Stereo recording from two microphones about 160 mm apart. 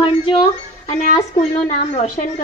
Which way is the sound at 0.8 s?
45° left (ahead or behind).